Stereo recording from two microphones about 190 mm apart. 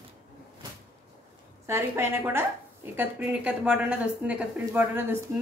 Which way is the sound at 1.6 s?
15° right (ahead or behind).